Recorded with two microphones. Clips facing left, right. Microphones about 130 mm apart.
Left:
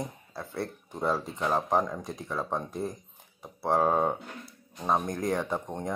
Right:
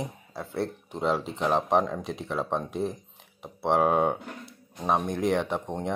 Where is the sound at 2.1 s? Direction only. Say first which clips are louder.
Right 4 dB; 90° right.